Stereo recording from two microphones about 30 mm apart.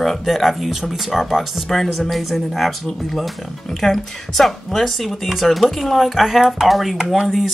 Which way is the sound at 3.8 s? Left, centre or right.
Centre.